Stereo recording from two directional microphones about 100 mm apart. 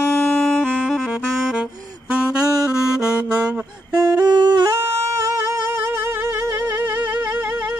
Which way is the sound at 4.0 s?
25° right (ahead or behind).